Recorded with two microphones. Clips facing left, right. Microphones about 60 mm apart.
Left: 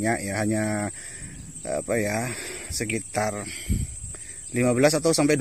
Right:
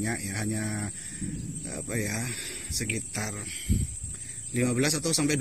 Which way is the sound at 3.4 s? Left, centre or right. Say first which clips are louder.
Left 1 dB; left.